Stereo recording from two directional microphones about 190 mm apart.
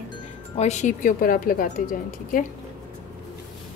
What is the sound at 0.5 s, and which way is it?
Speech, 35° left (ahead or behind).